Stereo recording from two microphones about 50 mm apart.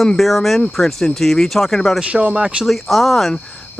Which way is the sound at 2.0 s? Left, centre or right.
Right.